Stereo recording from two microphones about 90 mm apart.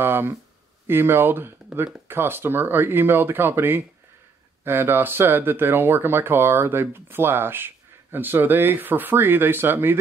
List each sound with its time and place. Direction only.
0.0 s speech: 25° right (ahead or behind)